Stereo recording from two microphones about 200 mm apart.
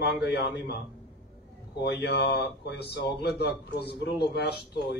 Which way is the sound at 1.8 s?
55° left (ahead or behind).